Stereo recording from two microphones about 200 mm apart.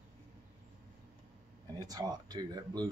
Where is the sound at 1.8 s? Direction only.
20° right (ahead or behind).